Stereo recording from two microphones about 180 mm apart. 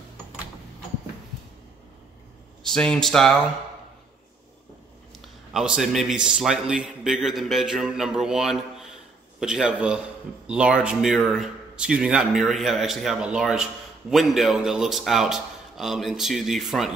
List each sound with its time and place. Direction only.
2.6 s a man's voice: 5° left (ahead or behind)
5.5 s a man's voice: 5° right (ahead or behind)